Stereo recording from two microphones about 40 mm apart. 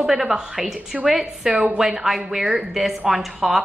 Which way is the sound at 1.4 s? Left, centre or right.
Right.